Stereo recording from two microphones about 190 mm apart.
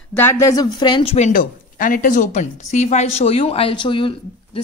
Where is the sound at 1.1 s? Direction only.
40° left (ahead or behind); by 4.6 s 25° left (ahead or behind).